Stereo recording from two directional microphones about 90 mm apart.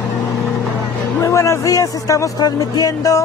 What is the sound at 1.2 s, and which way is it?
Speech, 35° left (ahead or behind).